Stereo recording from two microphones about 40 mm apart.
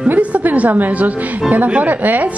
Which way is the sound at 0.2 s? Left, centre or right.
Right.